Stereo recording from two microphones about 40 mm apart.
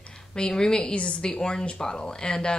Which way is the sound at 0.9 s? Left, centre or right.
Left.